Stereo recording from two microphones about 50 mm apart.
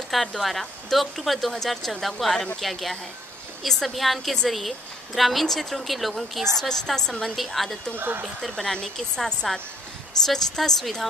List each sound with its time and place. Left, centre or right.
0.1 s a woman's voice: centre
7.3 s a woman's voice: centre
7.9 s speech: right
8.5 s a woman's voice: centre